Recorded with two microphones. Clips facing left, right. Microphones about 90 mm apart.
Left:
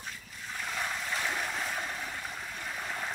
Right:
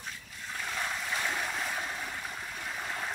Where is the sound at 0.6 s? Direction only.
Centre (ahead or behind).